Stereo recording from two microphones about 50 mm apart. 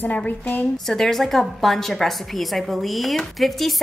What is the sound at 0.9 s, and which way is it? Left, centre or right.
A woman's voice, centre.